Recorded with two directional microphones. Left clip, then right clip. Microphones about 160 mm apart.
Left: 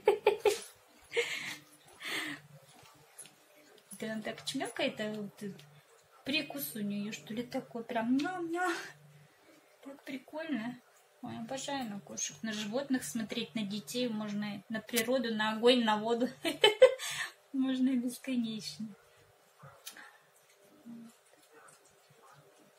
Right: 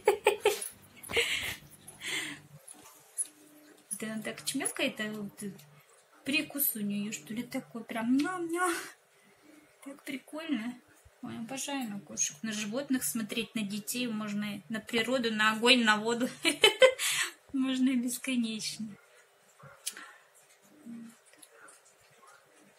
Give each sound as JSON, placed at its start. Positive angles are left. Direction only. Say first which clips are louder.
{"t": 0.0, "sound": "dog", "louder": "right 1 dB", "side_deg": 0}
{"t": 1.1, "sound": "a sound", "louder": "right 4 dB", "side_deg": 0}
{"t": 4.0, "sound": "speech", "louder": "right 1 dB", "side_deg": 0}
{"t": 6.2, "sound": "speech", "louder": "right 3 dB", "side_deg": 0}
{"t": 10.0, "sound": "speech", "louder": "right 2 dB", "side_deg": 0}
{"t": 12.1, "sound": "speech", "louder": "right 4 dB", "side_deg": 5}